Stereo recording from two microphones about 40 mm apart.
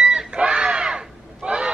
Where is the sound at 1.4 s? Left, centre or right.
Right.